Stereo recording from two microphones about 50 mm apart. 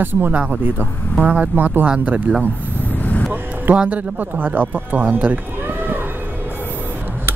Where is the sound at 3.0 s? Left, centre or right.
Left.